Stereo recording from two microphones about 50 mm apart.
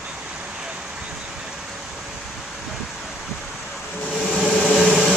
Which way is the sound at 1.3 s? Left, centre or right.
Centre.